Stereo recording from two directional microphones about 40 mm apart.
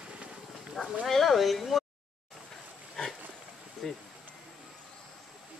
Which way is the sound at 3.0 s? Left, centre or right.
Centre.